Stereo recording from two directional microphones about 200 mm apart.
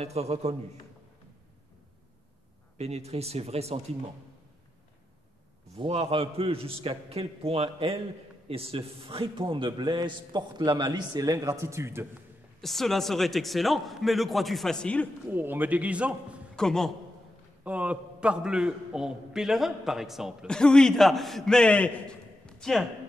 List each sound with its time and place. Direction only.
0.0 s speech: 30° right (ahead or behind)
2.8 s speech: 30° right (ahead or behind)
5.8 s a man's voice: 30° right (ahead or behind); by 12.1 s 10° right (ahead or behind)
12.5 s a man's voice: centre (ahead or behind)
15.3 s a man's voice: 10° right (ahead or behind)